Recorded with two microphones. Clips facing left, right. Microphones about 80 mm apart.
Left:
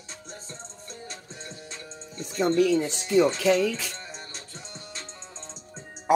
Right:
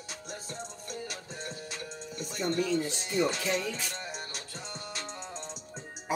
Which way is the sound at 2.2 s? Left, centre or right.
Left.